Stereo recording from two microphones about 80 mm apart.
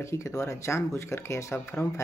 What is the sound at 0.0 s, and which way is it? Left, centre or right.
Speech, left.